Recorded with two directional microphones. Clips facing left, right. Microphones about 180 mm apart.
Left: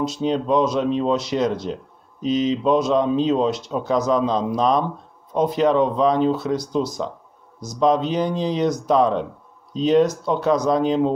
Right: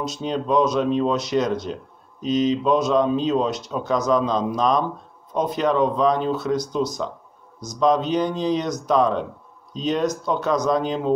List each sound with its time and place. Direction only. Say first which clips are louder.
0.0 s speech: left 4 dB; 25° left (ahead or behind)